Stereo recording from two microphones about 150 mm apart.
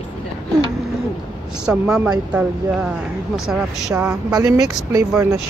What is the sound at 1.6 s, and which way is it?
Speech, 5° right (ahead or behind).